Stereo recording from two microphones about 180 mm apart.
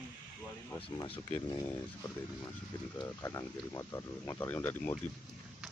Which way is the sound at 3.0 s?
15° left (ahead or behind).